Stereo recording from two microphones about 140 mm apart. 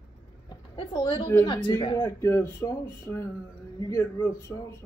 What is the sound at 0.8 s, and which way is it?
Speech, 35° left (ahead or behind).